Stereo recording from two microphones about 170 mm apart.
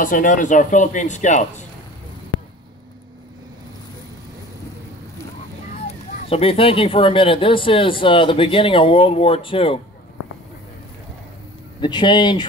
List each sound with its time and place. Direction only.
0.0 s speech: 50° left (ahead or behind)
5.9 s speech: 35° left (ahead or behind)
11.8 s speech: 25° left (ahead or behind)